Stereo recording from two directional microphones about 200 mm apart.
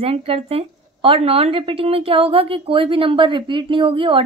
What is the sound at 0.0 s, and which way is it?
A woman's voice, 30° right (ahead or behind).